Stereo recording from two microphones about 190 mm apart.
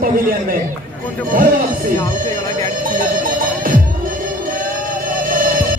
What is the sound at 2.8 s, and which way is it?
Music, 45° right (ahead or behind).